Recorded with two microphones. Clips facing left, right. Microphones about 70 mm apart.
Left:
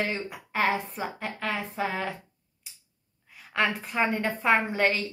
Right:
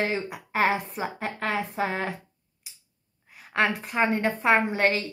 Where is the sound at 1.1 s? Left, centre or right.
Right.